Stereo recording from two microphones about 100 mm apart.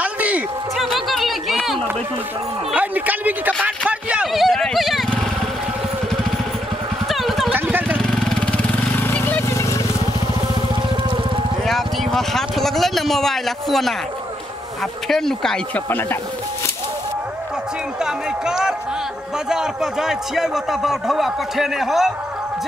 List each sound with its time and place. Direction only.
0.0 s music: 15° right (ahead or behind)
0.7 s a sound: centre (ahead or behind)
2.7 s speech: 15° right (ahead or behind)
3.6 s a sound: 10° right (ahead or behind)
7.1 s clip-clop: centre (ahead or behind)
8.0 s vehicle: 5° left (ahead or behind)
9.5 s wild animals: 30° left (ahead or behind)
11.6 s a sound: centre (ahead or behind)
15.0 s a man's voice: 5° left (ahead or behind)
15.9 s speech: 20° left (ahead or behind)
18.0 s a sound: 5° right (ahead or behind)
19.5 s a man's voice: 5° right (ahead or behind)